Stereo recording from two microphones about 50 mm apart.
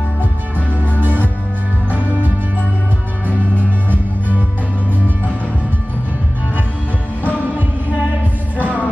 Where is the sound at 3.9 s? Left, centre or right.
Right.